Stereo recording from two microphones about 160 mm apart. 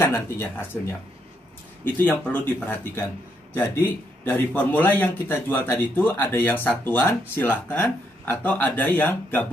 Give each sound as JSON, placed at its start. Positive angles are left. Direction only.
{"t": 0.0, "sound": "a man's voice", "side_deg": 15}
{"t": 2.0, "sound": "a man's voice", "side_deg": 10}